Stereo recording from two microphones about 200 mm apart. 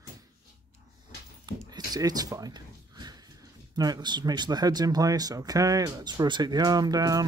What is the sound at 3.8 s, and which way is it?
Speech, 20° right (ahead or behind).